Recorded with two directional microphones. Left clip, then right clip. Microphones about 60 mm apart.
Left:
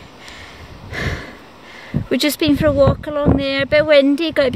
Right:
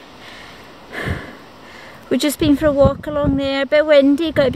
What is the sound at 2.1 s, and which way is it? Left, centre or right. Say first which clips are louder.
Speech: even; centre.